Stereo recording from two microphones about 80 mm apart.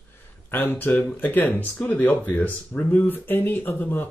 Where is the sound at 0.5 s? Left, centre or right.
Left.